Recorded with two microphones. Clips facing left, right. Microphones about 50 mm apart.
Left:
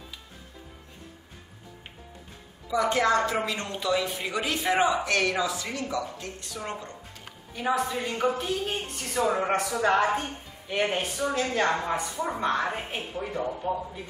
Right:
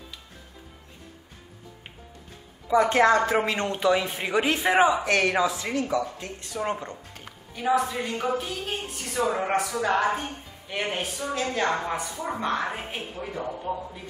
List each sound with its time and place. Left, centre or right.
2.7 s speech: right
7.7 s speech: centre